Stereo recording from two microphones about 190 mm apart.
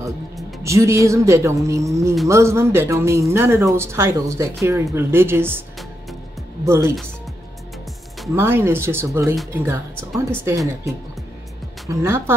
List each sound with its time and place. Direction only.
0.7 s speech: 15° right (ahead or behind)
6.6 s speech: 15° right (ahead or behind)
8.4 s speech: 10° right (ahead or behind)
11.9 s speech: 15° right (ahead or behind)